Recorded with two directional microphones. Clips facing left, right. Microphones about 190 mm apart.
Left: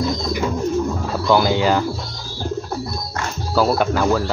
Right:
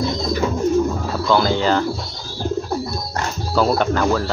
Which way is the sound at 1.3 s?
10° left (ahead or behind).